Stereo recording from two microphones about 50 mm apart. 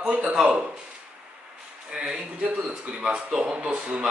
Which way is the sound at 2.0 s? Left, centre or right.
Right.